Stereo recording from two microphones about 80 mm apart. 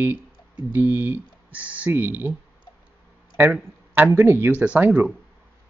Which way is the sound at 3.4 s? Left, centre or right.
Right.